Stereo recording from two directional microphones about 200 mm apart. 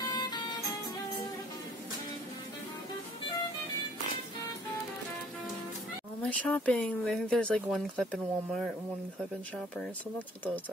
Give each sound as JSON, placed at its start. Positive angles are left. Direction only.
{"t": 0.1, "sound": "music", "side_deg": 20}
{"t": 6.2, "sound": "speech", "side_deg": 5}
{"t": 10.1, "sound": "speech", "side_deg": 10}